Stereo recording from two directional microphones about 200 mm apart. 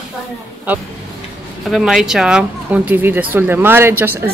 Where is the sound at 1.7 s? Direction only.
Centre (ahead or behind).